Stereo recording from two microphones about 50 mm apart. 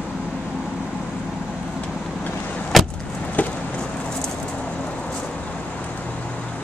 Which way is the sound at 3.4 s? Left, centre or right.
Left.